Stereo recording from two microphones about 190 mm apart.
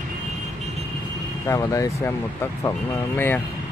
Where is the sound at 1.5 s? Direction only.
15° left (ahead or behind).